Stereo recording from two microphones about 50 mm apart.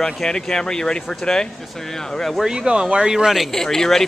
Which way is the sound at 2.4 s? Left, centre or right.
Centre.